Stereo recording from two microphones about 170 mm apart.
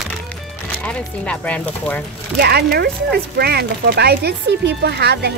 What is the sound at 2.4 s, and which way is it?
Speech, 70° right (ahead or behind).